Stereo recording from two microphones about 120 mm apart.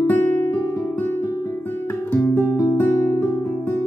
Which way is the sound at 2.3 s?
30° left (ahead or behind).